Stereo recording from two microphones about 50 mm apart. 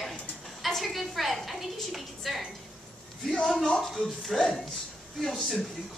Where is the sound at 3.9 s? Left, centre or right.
Centre.